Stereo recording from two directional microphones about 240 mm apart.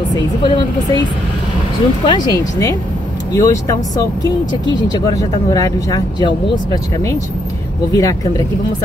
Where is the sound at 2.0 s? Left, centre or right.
Centre.